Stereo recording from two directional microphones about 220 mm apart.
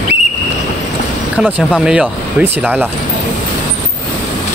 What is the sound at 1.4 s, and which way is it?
Speech, 5° right (ahead or behind).